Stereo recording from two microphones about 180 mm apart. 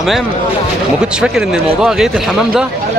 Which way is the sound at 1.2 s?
5° right (ahead or behind).